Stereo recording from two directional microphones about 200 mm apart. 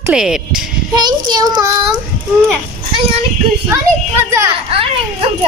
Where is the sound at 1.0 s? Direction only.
20° right (ahead or behind).